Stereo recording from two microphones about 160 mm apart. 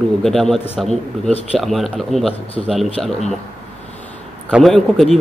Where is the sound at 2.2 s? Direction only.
40° left (ahead or behind).